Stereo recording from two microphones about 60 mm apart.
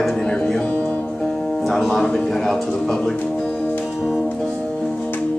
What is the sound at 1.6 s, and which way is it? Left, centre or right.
Speech, centre.